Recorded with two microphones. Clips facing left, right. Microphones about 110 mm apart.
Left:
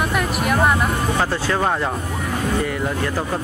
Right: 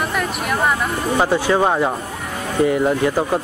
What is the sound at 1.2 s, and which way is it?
Speech, 15° right (ahead or behind).